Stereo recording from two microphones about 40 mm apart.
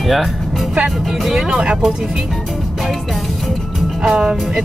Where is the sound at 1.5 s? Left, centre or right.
Right.